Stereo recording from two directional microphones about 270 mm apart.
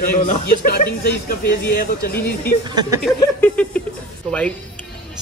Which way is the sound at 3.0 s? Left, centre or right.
Centre.